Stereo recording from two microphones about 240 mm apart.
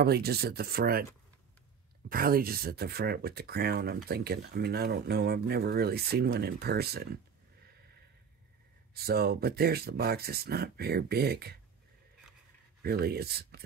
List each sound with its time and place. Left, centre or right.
0.0 s speech: right
2.0 s speech: right
8.9 s speech: right
12.8 s speech: right